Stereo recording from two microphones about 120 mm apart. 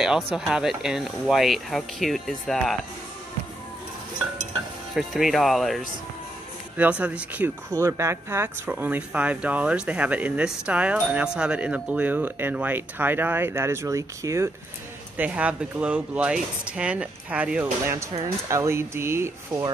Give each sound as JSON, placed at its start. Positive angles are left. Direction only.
{"t": 0.0, "sound": "speech", "side_deg": -5}
{"t": 4.9, "sound": "speech", "side_deg": 0}
{"t": 6.8, "sound": "speech", "side_deg": -10}
{"t": 15.1, "sound": "speech", "side_deg": -10}
{"t": 17.9, "sound": "speech", "side_deg": -25}